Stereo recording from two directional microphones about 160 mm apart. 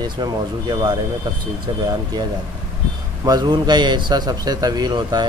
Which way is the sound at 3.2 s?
25° right (ahead or behind).